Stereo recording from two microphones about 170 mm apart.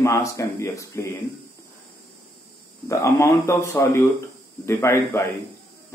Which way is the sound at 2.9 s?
15° left (ahead or behind).